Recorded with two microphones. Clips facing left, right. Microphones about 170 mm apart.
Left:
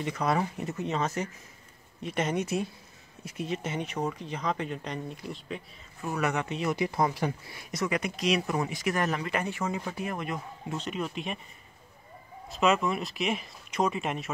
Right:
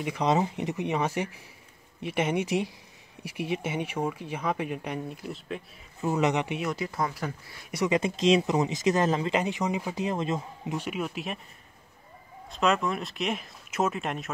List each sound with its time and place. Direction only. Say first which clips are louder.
0.2 s speech: right 4 dB; 20° right (ahead or behind); by 5.6 s 5° right (ahead or behind)
5.9 s speech: right 4 dB; 20° right (ahead or behind)
6.9 s speech: left 3 dB; 25° left (ahead or behind)
7.7 s speech: right 4 dB; 20° right (ahead or behind)
10.8 s speech: even; 5° right (ahead or behind)
12.4 s speech: even; 5° left (ahead or behind)